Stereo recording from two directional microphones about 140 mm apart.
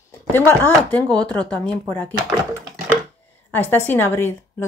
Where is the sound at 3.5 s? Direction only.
15° left (ahead or behind).